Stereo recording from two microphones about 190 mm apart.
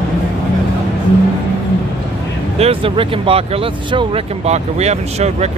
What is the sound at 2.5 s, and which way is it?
Speech, 30° right (ahead or behind).